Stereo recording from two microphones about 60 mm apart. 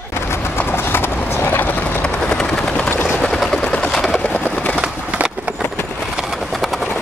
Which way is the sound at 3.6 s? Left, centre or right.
Centre.